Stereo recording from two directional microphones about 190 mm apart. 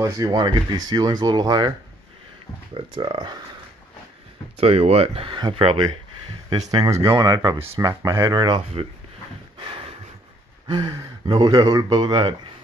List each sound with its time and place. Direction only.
0.0 s speech: 20° right (ahead or behind)
2.7 s speech: 25° right (ahead or behind)
4.6 s speech: 30° right (ahead or behind)
9.6 s a sound: 30° right (ahead or behind)
10.7 s speech: 20° right (ahead or behind)